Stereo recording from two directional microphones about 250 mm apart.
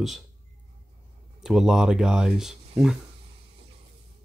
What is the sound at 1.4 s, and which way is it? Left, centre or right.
Speech, centre.